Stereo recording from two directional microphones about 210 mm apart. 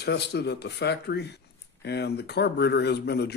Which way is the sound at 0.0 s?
50° left (ahead or behind).